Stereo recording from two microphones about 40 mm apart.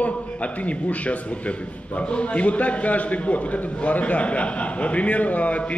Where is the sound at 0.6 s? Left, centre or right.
Left.